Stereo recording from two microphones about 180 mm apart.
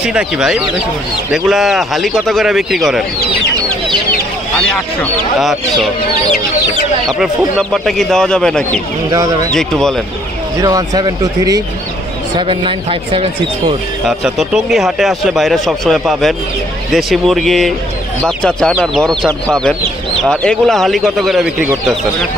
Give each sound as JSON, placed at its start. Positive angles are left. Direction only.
{"t": 0.0, "sound": "speech", "side_deg": -5}
{"t": 4.6, "sound": "a sound", "side_deg": 5}
{"t": 5.4, "sound": "chicken", "side_deg": 0}
{"t": 7.1, "sound": "speech", "side_deg": 0}
{"t": 9.1, "sound": "speech", "side_deg": -20}
{"t": 9.5, "sound": "speech", "side_deg": 5}
{"t": 10.6, "sound": "speech", "side_deg": -20}
{"t": 14.0, "sound": "speech", "side_deg": 0}
{"t": 20.2, "sound": "speech", "side_deg": 5}